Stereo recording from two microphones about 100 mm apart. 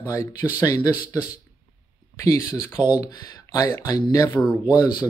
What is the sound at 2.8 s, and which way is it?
Speech, 40° left (ahead or behind).